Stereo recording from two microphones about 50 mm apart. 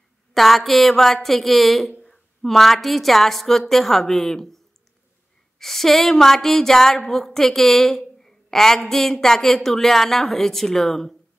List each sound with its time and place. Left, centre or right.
0.3 s a woman's voice: centre
5.6 s speech: centre